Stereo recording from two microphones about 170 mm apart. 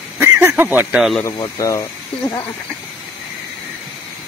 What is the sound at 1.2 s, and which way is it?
Speech, 20° left (ahead or behind).